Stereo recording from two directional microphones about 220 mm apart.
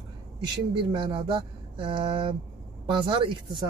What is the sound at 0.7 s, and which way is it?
Speech, 20° right (ahead or behind).